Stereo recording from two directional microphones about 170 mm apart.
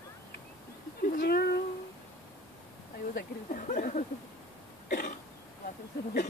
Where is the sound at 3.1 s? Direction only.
50° left (ahead or behind).